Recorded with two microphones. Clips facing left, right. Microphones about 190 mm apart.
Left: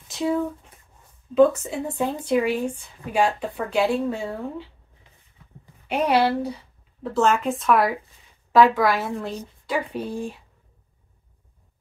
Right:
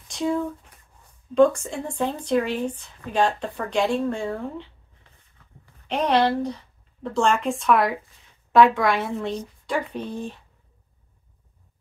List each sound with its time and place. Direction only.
0.1 s speech: 5° left (ahead or behind)
5.9 s a woman's voice: 10° left (ahead or behind)